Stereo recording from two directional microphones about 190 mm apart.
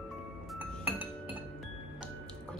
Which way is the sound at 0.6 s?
10° right (ahead or behind).